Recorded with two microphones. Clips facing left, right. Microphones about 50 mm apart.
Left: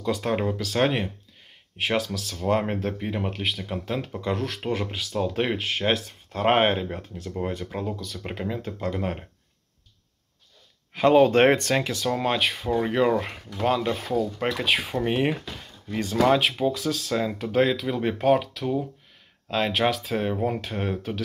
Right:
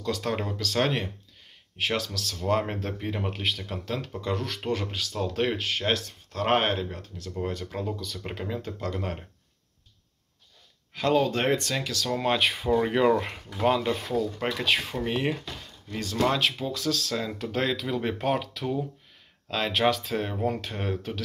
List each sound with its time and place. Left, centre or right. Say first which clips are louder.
0.0 s speech: left 4 dB; centre
10.9 s speech: left 6 dB; left
11.2 s speech: left 7 dB; left
11.9 s speech: left 3 dB; left
12.2 s speech: even; centre